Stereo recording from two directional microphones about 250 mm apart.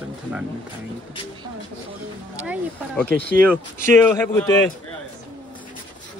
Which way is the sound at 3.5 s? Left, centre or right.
Centre.